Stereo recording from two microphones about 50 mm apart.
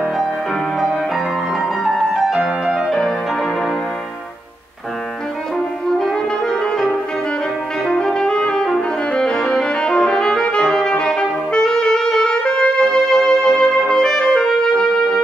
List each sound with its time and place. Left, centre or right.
1.9 s music: centre
5.9 s brass instrument: centre
7.8 s music: centre